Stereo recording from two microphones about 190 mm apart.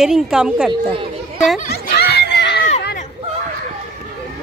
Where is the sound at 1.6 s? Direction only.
55° left (ahead or behind).